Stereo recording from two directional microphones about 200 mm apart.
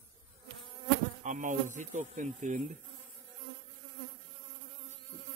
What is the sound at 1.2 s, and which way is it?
Speech, 40° right (ahead or behind).